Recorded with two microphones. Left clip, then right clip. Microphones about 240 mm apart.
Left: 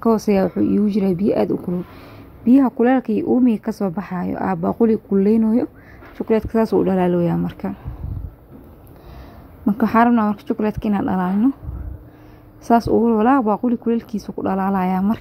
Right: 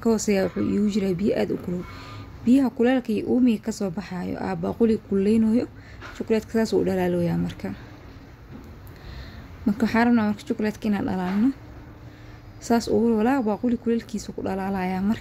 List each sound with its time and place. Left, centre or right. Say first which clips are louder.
0.0 s speech: left 5 dB; centre
9.7 s speech: left 6 dB; centre
12.6 s speech: left 6 dB; centre